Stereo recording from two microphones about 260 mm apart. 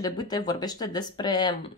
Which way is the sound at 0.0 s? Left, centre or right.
Centre.